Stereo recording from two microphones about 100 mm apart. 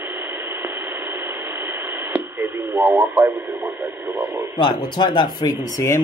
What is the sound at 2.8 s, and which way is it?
Speech, 20° right (ahead or behind).